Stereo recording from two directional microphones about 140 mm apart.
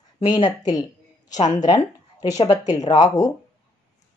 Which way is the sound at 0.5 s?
25° left (ahead or behind).